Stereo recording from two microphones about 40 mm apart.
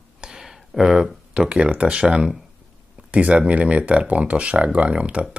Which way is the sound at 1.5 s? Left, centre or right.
Right.